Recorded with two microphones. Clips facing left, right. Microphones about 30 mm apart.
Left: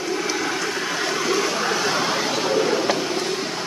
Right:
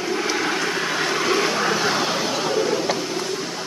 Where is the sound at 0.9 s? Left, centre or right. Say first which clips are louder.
Right 1 dB; right.